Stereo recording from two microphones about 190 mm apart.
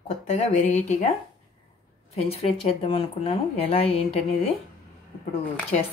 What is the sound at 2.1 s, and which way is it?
A woman's voice, 30° left (ahead or behind).